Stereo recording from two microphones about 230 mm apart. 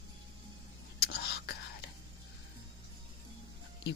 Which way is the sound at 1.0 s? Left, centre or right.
Left.